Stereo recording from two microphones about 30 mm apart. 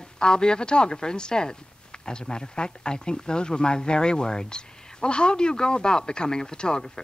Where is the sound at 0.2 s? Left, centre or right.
Left.